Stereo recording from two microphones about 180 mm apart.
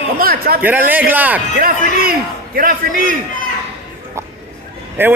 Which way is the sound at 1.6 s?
55° right (ahead or behind).